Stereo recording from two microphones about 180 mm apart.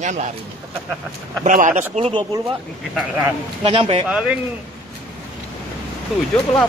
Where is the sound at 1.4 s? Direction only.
45° right (ahead or behind).